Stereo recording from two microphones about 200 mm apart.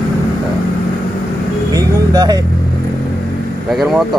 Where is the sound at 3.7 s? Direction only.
Centre (ahead or behind).